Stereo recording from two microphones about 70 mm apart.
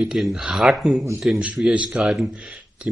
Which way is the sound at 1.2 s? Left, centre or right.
Centre.